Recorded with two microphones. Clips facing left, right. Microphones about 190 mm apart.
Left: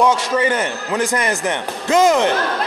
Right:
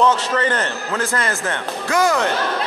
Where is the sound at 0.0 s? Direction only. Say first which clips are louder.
Left 1 dB; 10° left (ahead or behind).